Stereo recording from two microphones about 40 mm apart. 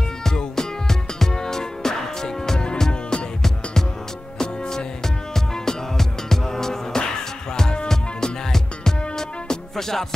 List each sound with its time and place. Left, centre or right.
0.2 s music: centre
2.9 s music: left
4.4 s music: centre